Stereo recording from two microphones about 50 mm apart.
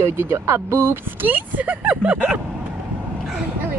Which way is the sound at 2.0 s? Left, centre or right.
Right.